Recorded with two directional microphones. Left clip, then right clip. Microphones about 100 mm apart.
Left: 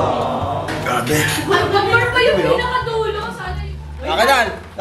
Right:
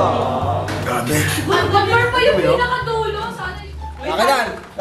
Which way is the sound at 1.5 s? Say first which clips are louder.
Even; 15° right (ahead or behind).